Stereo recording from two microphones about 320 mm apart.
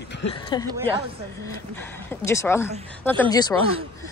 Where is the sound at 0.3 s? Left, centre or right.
Centre.